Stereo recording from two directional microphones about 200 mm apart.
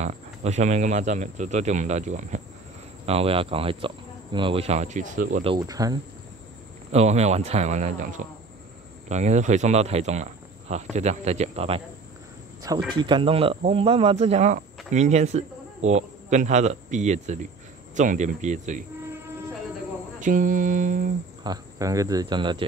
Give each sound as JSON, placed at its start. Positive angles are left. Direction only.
{"t": 0.0, "sound": "speech", "side_deg": -35}
{"t": 5.4, "sound": "speech", "side_deg": -20}
{"t": 6.9, "sound": "a man's voice", "side_deg": -30}
{"t": 20.2, "sound": "speech", "side_deg": -40}
{"t": 21.5, "sound": "speech", "side_deg": -15}